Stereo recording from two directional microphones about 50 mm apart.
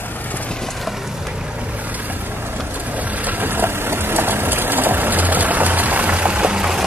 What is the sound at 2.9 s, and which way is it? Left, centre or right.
Vehicle, right.